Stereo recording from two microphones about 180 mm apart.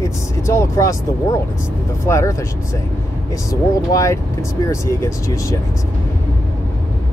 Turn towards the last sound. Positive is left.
turn(degrees=15)  # may be behind; listen again after turning